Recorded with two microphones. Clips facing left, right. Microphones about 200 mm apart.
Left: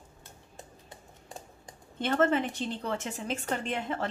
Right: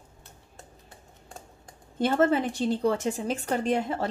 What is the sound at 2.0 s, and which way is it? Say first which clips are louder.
A woman's voice: right 3 dB; 35° right (ahead or behind).